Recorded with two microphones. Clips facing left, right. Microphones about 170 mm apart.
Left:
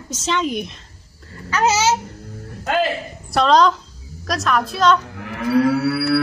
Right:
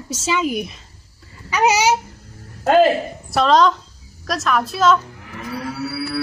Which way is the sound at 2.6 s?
45° right (ahead or behind).